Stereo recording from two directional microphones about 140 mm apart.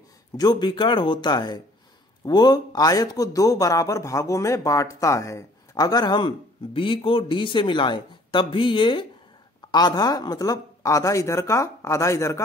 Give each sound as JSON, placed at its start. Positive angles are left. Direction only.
{"t": 0.4, "sound": "speech", "side_deg": 30}